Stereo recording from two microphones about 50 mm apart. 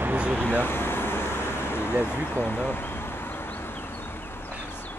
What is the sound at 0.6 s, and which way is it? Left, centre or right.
Vehicle, left.